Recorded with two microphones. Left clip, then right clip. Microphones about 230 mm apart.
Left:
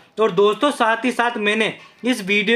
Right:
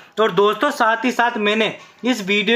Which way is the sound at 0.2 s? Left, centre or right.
Centre.